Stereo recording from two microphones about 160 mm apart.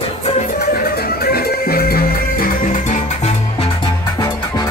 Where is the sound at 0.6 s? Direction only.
65° left (ahead or behind).